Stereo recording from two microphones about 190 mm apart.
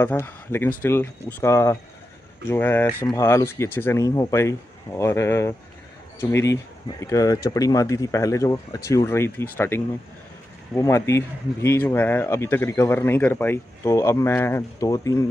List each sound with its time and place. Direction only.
0.0 s speech: 10° left (ahead or behind)